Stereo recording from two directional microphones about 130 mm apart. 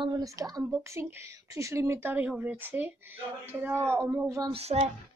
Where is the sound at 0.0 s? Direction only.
30° right (ahead or behind).